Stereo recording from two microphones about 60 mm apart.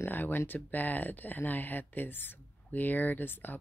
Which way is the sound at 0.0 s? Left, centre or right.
Left.